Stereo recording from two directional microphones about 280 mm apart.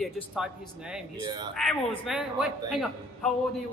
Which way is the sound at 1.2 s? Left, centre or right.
Centre.